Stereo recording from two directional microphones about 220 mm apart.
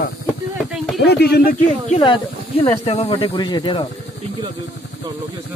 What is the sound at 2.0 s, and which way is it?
Speech, 25° left (ahead or behind).